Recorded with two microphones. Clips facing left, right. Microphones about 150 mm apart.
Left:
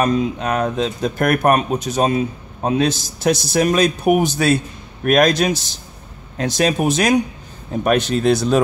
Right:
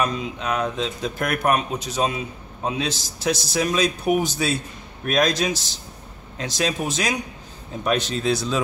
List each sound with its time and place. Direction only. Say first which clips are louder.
0.0 s speech: left 7 dB; 45° left (ahead or behind)